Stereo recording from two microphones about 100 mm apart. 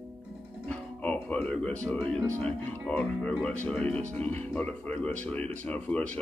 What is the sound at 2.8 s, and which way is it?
Speech, 5° left (ahead or behind).